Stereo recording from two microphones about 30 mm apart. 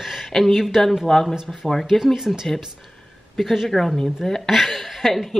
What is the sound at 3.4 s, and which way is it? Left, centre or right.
Speech, centre.